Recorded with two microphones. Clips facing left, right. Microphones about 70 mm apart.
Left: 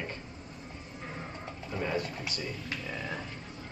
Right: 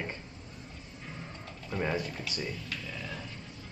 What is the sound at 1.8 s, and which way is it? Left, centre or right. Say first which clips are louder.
Speech: even; right.